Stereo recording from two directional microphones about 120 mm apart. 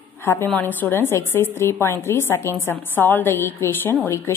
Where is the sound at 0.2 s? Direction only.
20° left (ahead or behind).